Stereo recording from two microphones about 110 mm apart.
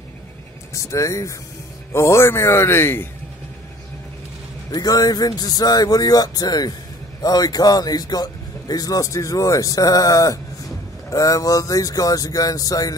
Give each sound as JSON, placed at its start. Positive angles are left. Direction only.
{"t": 0.8, "sound": "a man's voice", "side_deg": 30}
{"t": 4.6, "sound": "speech", "side_deg": 35}